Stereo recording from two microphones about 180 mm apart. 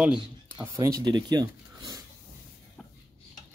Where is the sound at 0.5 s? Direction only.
15° right (ahead or behind).